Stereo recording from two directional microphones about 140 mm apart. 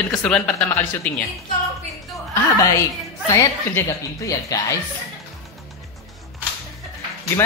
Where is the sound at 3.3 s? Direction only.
20° left (ahead or behind).